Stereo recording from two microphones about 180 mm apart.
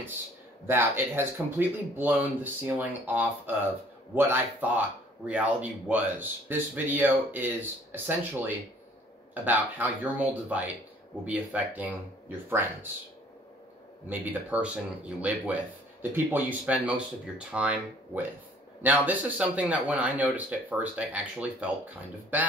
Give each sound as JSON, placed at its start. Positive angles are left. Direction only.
{"t": 0.7, "sound": "speech", "side_deg": -10}
{"t": 14.0, "sound": "speech", "side_deg": -10}